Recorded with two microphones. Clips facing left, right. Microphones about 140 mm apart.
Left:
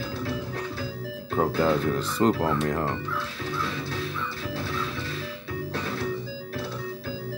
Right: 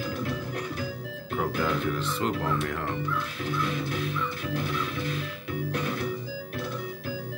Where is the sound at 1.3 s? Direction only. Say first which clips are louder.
Left 5 dB; 30° left (ahead or behind).